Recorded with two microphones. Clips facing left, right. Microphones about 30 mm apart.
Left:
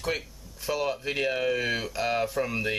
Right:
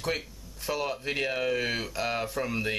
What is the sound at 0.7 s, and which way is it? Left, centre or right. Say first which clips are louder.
Speech: left 2 dB; centre.